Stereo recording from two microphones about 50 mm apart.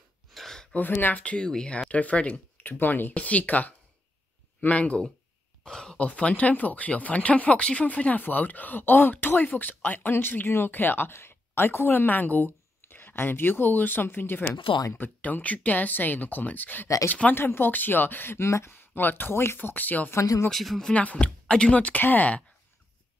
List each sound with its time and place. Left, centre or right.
0.3 s gasp: centre
0.7 s speech: left
1.2 s speech: left
2.5 s speech: left
5.7 s speech: centre
5.9 s speech: left
16.8 s speech: left
17.1 s speech: left
18.4 s speech: left
18.7 s speech: left
20.1 s speech: left
20.5 s speech: centre
20.9 s speech: left